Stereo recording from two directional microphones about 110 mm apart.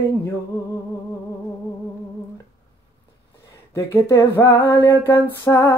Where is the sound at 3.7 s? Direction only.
25° left (ahead or behind).